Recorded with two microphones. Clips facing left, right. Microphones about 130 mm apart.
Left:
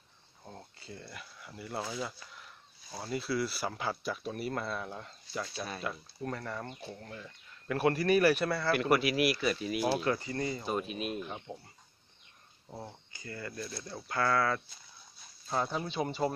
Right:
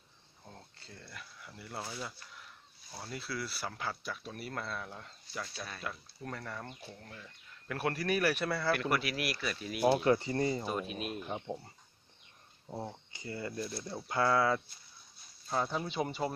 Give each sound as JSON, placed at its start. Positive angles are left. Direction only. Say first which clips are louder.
{"t": 0.5, "sound": "speech", "louder": "left 6 dB", "side_deg": 10}
{"t": 5.6, "sound": "speech", "louder": "left 5 dB", "side_deg": 20}
{"t": 5.9, "sound": "speech", "louder": "left 4 dB", "side_deg": 5}
{"t": 8.7, "sound": "speech", "louder": "left 6 dB", "side_deg": 15}
{"t": 9.9, "sound": "speech", "louder": "right 3 dB", "side_deg": -25}
{"t": 10.6, "sound": "speech", "louder": "left 2 dB", "side_deg": 5}
{"t": 11.2, "sound": "speech", "louder": "right 3 dB", "side_deg": -20}
{"t": 12.6, "sound": "speech", "louder": "right 4 dB", "side_deg": -15}
{"t": 15.5, "sound": "speech", "louder": "left 1 dB", "side_deg": 0}